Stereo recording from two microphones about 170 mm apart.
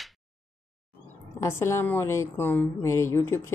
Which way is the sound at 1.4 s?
15° left (ahead or behind).